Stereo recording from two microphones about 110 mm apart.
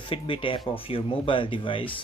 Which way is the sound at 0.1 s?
50° left (ahead or behind).